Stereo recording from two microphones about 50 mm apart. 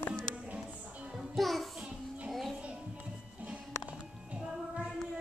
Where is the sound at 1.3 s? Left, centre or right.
Centre.